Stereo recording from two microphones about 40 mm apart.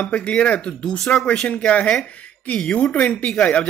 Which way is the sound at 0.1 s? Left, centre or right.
Left.